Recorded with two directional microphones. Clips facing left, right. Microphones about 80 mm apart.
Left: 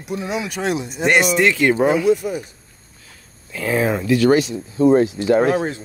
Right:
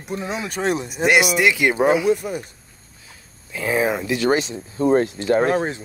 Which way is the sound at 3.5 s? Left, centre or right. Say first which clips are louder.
Left 1 dB; centre.